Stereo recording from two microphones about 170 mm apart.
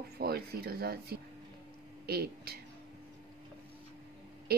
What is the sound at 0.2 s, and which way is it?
Speech, 65° right (ahead or behind).